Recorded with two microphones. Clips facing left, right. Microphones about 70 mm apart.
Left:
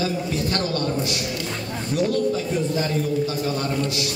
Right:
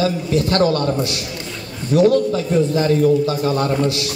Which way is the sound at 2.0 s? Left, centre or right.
Right.